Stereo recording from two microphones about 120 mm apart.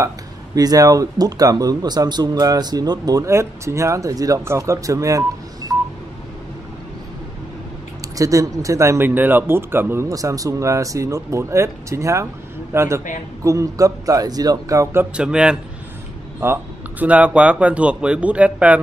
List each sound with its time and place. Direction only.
0.6 s speech: 30° right (ahead or behind)
5.7 s telephone dialing: 30° right (ahead or behind)
8.2 s speech: 30° right (ahead or behind)
15.1 s speech: 10° right (ahead or behind)
16.4 s speech: 20° right (ahead or behind)